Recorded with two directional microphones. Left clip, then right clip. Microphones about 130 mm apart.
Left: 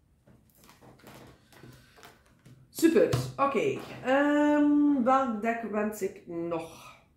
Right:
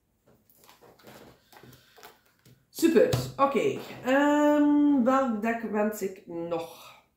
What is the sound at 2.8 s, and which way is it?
Speech, 5° left (ahead or behind).